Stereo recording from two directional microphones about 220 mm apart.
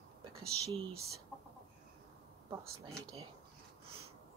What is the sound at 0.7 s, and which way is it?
Speech, 25° right (ahead or behind).